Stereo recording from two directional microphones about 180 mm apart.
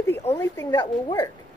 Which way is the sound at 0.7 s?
25° left (ahead or behind).